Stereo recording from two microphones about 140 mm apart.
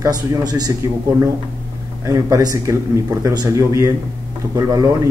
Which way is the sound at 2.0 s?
20° right (ahead or behind).